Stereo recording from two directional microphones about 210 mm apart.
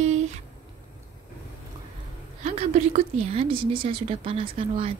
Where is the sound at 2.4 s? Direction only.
30° right (ahead or behind).